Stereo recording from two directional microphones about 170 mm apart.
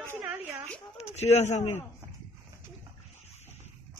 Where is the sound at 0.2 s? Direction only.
15° right (ahead or behind).